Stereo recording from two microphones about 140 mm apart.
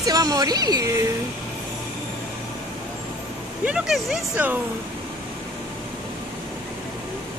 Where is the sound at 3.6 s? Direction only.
5° right (ahead or behind).